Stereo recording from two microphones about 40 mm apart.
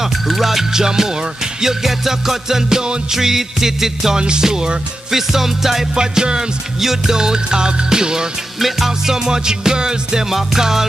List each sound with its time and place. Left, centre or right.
0.0 s music: centre
5.9 s music: centre
8.5 s music: centre